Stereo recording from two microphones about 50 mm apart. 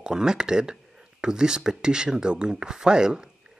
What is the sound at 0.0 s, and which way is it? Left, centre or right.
Speech, centre.